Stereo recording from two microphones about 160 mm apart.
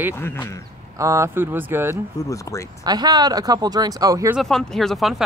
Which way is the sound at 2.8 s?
25° right (ahead or behind).